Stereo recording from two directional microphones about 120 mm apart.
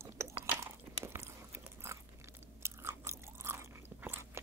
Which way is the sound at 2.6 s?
20° right (ahead or behind).